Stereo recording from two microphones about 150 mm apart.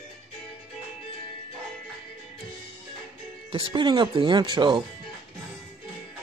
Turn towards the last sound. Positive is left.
turn(degrees=-30)  # may be behind; listen again after turning